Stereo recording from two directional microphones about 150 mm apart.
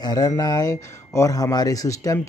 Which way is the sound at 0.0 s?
25° left (ahead or behind).